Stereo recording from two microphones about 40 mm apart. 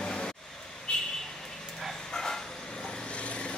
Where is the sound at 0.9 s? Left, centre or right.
Left.